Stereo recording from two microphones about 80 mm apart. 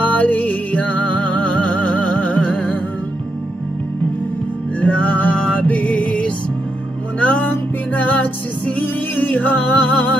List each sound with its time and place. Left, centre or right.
0.0 s music: centre
4.7 s music: centre